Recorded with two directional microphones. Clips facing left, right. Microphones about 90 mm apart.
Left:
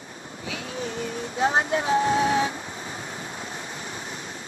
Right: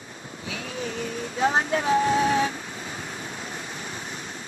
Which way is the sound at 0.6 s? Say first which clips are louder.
Even; 30° left (ahead or behind).